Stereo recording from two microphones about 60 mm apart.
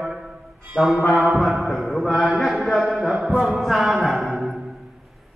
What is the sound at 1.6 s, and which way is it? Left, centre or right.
A man's voice, centre.